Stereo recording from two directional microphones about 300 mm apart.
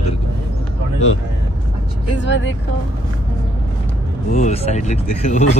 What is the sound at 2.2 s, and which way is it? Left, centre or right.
Speech, left.